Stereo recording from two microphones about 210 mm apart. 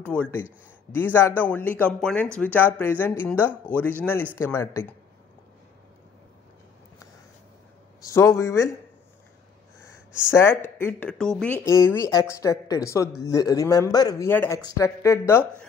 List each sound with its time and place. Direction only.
0.0 s speech: 5° left (ahead or behind)
8.0 s speech: 15° left (ahead or behind)
10.3 s speech: 10° left (ahead or behind)
11.6 s speech: 15° left (ahead or behind)